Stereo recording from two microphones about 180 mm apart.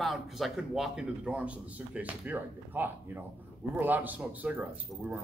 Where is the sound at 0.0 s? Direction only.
Centre (ahead or behind).